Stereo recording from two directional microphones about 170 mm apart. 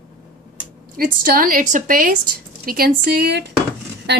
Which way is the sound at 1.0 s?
55° right (ahead or behind).